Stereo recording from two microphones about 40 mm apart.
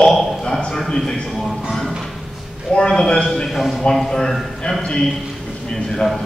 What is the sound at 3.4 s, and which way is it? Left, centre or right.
Speech, centre.